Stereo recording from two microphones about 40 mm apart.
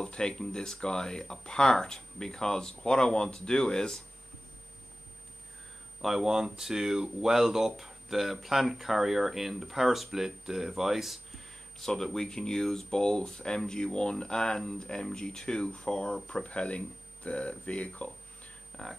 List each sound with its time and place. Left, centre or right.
0.0 s speech: left
5.9 s speech: centre
11.8 s speech: centre; by 18.1 s left
18.7 s speech: left